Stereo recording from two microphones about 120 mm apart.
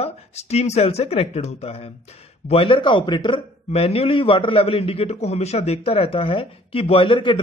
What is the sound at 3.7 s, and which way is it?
A man's voice, 55° left (ahead or behind).